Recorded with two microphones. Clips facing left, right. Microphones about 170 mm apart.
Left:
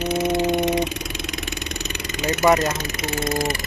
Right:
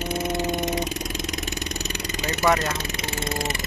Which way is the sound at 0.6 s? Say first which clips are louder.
Left 5 dB; 45° right (ahead or behind).